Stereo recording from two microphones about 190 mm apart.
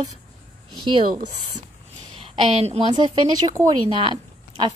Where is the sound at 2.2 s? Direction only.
30° right (ahead or behind).